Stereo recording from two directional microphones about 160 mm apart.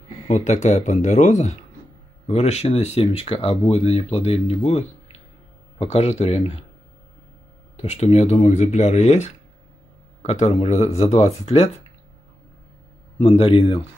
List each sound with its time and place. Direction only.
0.3 s speech: 45° left (ahead or behind)
7.7 s speech: 45° left (ahead or behind)
13.2 s speech: 35° left (ahead or behind)